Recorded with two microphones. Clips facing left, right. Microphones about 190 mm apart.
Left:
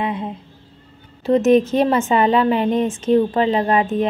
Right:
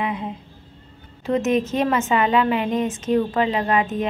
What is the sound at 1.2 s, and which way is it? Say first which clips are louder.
A woman's voice: left 6 dB; 35° left (ahead or behind).